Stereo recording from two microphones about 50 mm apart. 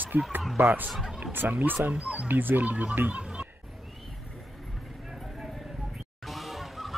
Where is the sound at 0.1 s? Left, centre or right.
Right.